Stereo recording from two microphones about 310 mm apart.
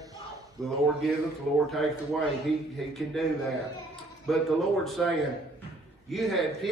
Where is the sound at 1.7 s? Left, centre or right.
Centre.